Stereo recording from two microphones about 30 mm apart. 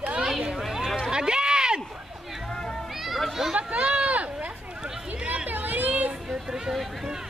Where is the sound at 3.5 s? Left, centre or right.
Right.